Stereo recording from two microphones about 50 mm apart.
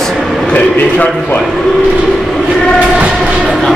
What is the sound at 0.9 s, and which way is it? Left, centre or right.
Speech, left.